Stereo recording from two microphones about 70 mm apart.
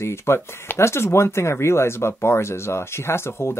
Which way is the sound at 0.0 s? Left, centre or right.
Left.